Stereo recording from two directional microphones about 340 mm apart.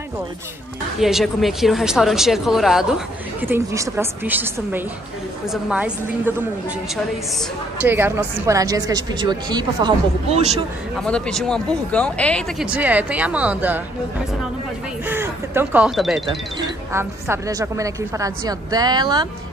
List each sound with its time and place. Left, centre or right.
0.9 s speech: centre
7.3 s a woman's voice: centre
11.0 s speech: centre
15.0 s a woman's voice: centre